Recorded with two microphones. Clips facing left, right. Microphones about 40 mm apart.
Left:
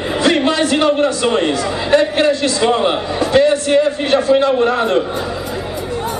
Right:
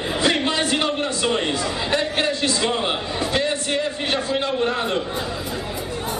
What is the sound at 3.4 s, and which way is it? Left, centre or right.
A man's voice, left.